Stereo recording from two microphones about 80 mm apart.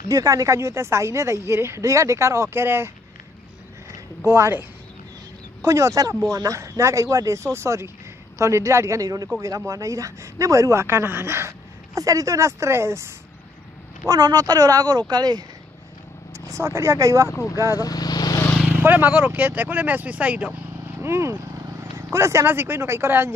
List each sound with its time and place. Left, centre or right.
0.1 s a woman's voice: right
3.9 s a woman's voice: right
12.0 s a woman's voice: right
14.0 s speech: right
16.3 s speech: right
17.3 s speech: left
17.7 s vehicle: left
18.7 s speech: right
21.0 s speech: right